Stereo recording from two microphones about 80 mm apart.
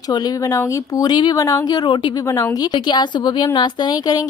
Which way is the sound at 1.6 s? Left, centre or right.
Left.